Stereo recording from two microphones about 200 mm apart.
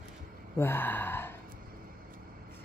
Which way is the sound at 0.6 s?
10° left (ahead or behind).